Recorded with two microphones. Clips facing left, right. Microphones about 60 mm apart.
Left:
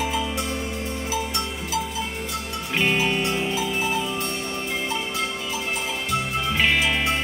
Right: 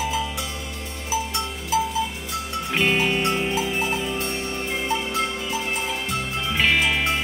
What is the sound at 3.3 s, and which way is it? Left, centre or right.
Music, right.